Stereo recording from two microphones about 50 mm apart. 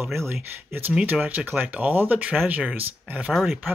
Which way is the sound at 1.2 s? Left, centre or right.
Right.